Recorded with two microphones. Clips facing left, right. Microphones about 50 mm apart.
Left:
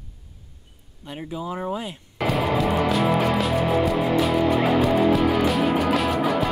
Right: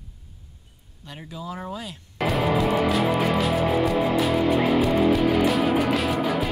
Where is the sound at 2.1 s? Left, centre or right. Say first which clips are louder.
Left 1 dB; centre.